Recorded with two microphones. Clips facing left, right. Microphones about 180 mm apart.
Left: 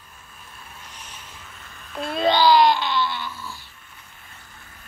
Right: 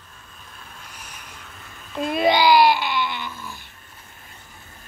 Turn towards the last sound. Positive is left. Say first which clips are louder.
# even
turn(degrees=-20)  # may be behind; listen again after turning